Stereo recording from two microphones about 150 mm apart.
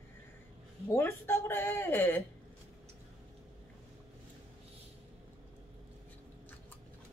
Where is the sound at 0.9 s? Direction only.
15° left (ahead or behind).